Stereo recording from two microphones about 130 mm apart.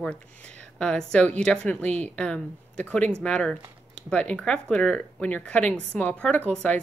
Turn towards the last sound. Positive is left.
turn(degrees=10)  # may be behind; listen again after turning